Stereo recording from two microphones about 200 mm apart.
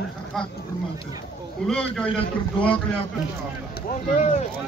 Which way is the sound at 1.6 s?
5° left (ahead or behind).